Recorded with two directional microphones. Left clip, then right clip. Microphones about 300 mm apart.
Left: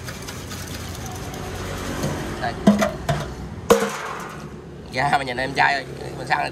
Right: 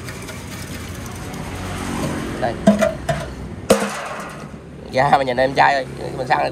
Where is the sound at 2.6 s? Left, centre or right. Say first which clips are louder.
Right 3 dB; centre.